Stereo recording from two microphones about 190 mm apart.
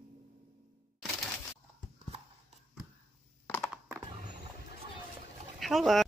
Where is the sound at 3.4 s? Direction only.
5° left (ahead or behind).